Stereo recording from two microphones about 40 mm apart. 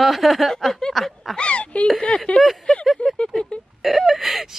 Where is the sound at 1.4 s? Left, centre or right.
Left.